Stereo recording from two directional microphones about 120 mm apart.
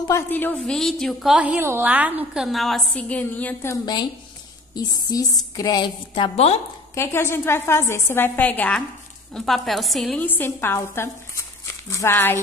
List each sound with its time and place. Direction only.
0.1 s a woman's voice: 15° left (ahead or behind)
0.7 s a woman's voice: 5° left (ahead or behind)
1.4 s a woman's voice: 15° right (ahead or behind)
2.4 s a woman's voice: centre (ahead or behind)
3.7 s a woman's voice: 35° left (ahead or behind)
6.3 s speech: 60° left (ahead or behind)
7.0 s a woman's voice: 20° left (ahead or behind)
9.3 s a woman's voice: centre (ahead or behind)
10.1 s speech: 15° left (ahead or behind)